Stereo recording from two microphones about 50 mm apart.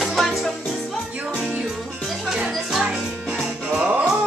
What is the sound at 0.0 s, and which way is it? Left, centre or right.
Music, centre.